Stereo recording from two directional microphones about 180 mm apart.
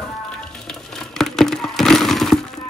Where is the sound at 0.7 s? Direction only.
5° left (ahead or behind).